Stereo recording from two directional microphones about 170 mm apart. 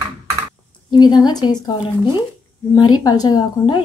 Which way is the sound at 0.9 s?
25° left (ahead or behind).